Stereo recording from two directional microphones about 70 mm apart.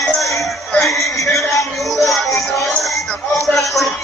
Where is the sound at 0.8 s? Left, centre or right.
Left.